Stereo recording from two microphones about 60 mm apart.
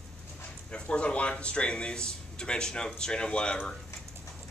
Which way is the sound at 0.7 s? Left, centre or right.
Centre.